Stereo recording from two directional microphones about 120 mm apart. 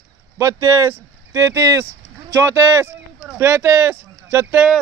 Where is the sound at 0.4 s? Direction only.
25° right (ahead or behind).